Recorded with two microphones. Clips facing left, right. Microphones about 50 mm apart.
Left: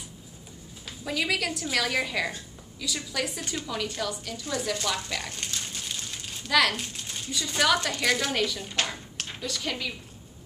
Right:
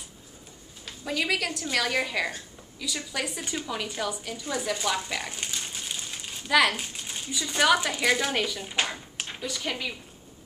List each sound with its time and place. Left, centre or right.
0.8 s a woman's voice: centre